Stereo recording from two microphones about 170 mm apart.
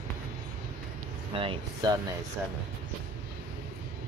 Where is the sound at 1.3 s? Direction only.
30° right (ahead or behind).